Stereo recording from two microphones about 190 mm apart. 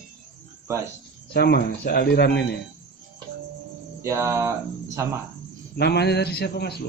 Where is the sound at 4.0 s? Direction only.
15° right (ahead or behind).